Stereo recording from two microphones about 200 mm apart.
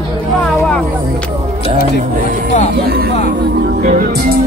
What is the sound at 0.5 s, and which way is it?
Speech, 5° left (ahead or behind).